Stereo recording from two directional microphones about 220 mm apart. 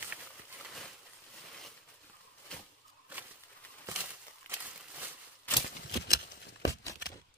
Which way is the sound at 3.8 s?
10° right (ahead or behind).